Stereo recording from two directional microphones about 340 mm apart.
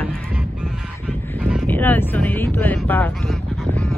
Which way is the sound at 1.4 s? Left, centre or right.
Centre.